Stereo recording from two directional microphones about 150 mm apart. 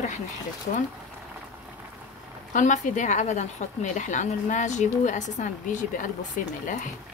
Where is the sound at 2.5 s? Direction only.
55° left (ahead or behind).